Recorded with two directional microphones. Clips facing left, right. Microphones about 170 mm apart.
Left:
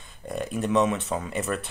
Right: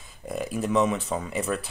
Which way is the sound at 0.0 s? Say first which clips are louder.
Even; 5° right (ahead or behind).